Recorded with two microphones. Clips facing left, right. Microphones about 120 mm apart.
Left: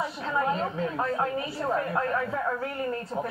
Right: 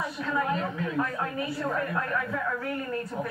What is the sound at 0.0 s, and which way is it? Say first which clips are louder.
A woman's voice: left 1 dB; 25° left (ahead or behind).